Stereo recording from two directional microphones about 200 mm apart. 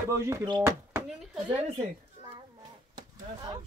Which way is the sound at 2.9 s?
20° right (ahead or behind).